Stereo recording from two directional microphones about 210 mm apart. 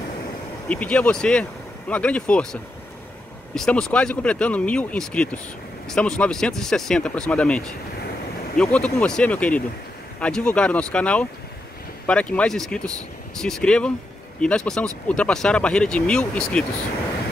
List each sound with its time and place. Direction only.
0.7 s speech: 5° left (ahead or behind)